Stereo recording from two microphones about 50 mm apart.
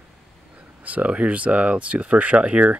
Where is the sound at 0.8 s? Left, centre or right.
Right.